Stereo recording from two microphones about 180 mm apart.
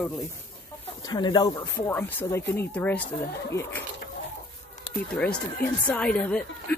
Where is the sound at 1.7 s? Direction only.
10° left (ahead or behind).